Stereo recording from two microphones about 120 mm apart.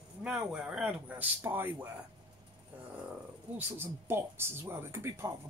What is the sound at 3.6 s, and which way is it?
Speech, 20° right (ahead or behind).